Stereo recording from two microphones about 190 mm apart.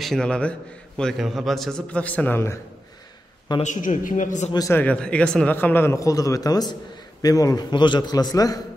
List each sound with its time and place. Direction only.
0.0 s a man's voice: 5° left (ahead or behind)
3.6 s a man's voice: 40° left (ahead or behind)
4.5 s speech: 15° left (ahead or behind)